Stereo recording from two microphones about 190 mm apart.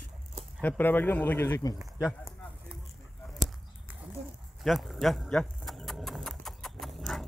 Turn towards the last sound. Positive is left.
turn(degrees=0)  # may be behind; listen again after turning